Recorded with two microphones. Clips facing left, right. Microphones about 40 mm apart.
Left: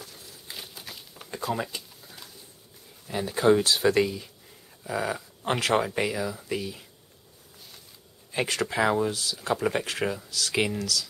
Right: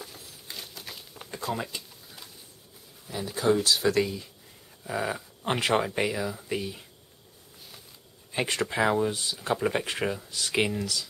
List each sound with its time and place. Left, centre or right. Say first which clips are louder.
0.5 s a sound: even; centre
3.1 s speech: left 4 dB; left
4.8 s dog: left 1 dB; centre
5.7 s speech: left 1 dB; centre
8.5 s speech: even; centre
9.1 s speech: left 1 dB; right
9.5 s speech: even; centre
10.8 s speech: left 2 dB; right